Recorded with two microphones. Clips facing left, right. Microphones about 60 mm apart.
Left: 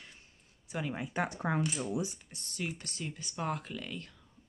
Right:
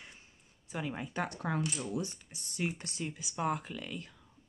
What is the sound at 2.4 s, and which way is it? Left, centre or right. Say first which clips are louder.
Speech: right 2 dB; centre.